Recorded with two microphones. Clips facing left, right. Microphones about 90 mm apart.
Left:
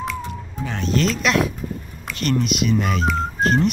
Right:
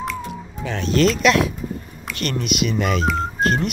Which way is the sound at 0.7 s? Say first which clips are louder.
Right 2 dB; 80° right.